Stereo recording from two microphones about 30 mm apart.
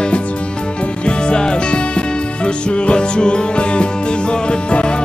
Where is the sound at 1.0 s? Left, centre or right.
Left.